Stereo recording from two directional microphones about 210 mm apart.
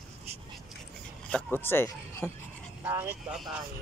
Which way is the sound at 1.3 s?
10° left (ahead or behind).